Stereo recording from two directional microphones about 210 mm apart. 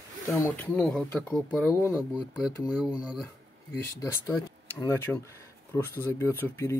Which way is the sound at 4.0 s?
15° left (ahead or behind).